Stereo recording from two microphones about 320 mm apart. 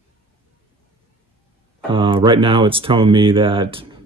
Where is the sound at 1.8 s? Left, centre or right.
Centre.